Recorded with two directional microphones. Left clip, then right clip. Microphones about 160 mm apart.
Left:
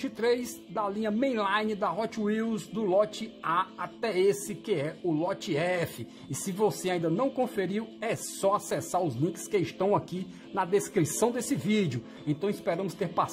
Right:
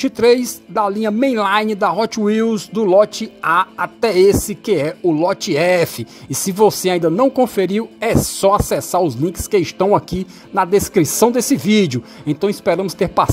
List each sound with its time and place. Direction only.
0.0 s speech: 40° right (ahead or behind)